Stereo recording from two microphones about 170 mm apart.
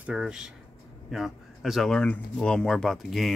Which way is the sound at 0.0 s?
5° right (ahead or behind).